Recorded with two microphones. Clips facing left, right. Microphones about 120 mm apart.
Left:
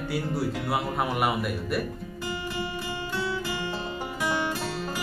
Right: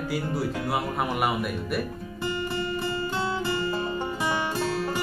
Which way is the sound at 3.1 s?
25° right (ahead or behind).